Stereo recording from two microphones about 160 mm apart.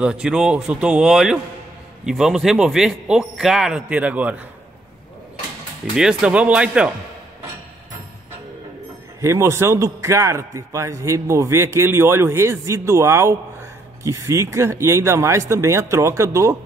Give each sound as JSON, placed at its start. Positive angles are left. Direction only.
{"t": 0.0, "sound": "a man's voice", "side_deg": -5}
{"t": 5.9, "sound": "a man's voice", "side_deg": -5}
{"t": 9.2, "sound": "a man's voice", "side_deg": -15}